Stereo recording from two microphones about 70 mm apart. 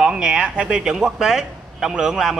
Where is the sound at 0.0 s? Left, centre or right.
Centre.